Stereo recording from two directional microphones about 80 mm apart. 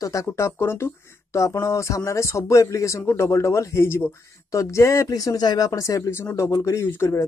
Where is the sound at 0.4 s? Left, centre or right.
Left.